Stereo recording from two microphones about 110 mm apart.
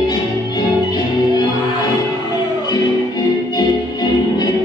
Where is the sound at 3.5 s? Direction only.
40° left (ahead or behind).